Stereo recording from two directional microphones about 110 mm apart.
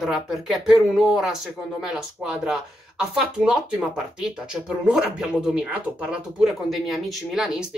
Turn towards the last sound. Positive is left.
turn(degrees=-5)  # may be behind; listen again after turning